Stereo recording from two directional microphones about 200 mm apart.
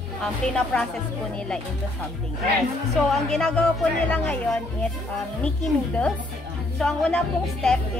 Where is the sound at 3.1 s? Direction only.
5° left (ahead or behind).